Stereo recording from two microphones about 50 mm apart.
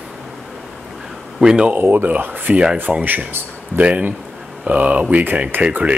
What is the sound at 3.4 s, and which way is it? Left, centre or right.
Speech, right.